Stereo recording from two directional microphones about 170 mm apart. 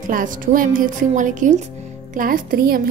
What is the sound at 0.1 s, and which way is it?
A woman's voice, 55° right (ahead or behind).